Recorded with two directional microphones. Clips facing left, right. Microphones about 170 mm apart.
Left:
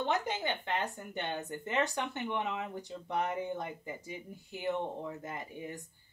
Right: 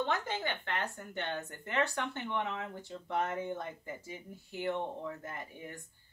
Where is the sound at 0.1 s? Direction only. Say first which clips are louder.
Left 2 dB; 20° left (ahead or behind).